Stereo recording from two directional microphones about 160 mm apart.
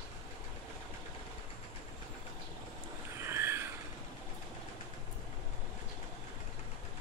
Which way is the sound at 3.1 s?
15° right (ahead or behind).